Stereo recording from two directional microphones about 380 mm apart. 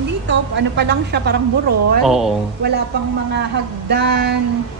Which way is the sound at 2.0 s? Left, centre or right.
Centre.